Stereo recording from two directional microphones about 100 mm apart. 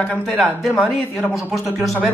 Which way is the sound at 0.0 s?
10° left (ahead or behind).